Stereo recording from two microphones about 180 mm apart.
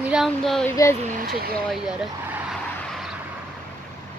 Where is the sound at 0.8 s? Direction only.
20° left (ahead or behind).